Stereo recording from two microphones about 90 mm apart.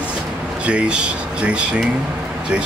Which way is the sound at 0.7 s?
10° right (ahead or behind).